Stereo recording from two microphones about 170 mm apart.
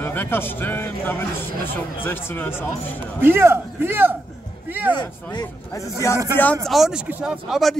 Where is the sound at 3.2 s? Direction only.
15° right (ahead or behind).